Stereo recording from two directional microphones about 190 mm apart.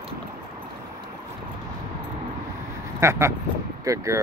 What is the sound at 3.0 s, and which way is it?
Speech, 15° right (ahead or behind).